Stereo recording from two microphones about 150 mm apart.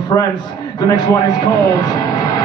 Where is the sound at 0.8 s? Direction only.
25° left (ahead or behind).